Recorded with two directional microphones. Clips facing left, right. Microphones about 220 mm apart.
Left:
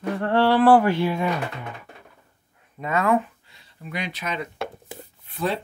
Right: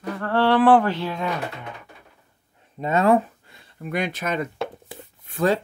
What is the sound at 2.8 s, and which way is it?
Speech, 30° right (ahead or behind).